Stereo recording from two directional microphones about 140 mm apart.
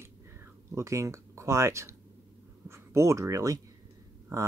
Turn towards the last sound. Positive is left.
turn(degrees=-25)  # may be behind; listen again after turning